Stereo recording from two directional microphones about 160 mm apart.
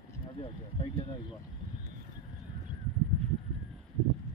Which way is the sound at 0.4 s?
35° left (ahead or behind).